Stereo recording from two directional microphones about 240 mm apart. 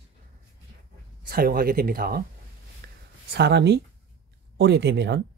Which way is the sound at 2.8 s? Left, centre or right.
Right.